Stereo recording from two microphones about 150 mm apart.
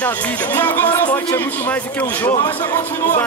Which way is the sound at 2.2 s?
30° left (ahead or behind).